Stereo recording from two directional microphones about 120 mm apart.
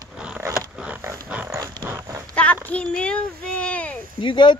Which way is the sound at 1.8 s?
25° right (ahead or behind).